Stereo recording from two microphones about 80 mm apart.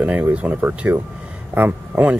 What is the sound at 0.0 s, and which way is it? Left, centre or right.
Speech, centre.